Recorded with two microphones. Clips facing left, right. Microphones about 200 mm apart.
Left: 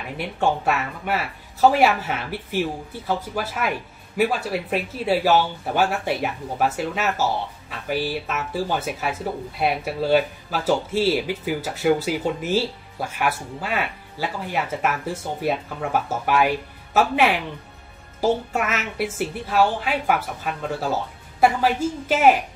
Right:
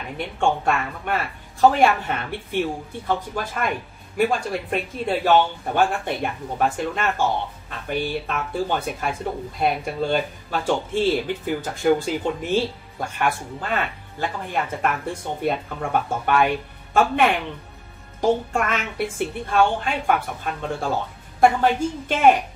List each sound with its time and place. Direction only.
0.2 s speech: 5° left (ahead or behind)